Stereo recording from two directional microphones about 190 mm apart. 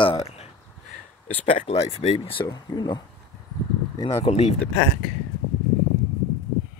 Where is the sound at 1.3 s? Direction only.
35° left (ahead or behind).